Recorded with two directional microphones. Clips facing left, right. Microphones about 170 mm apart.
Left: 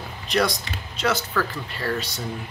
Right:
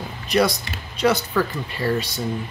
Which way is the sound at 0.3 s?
10° right (ahead or behind).